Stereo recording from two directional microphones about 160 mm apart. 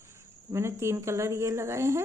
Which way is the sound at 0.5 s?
15° right (ahead or behind).